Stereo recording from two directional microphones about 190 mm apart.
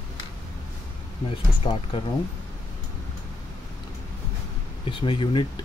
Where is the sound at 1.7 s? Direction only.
25° left (ahead or behind).